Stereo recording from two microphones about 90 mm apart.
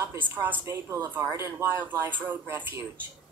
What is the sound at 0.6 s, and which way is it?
Speech, 35° right (ahead or behind).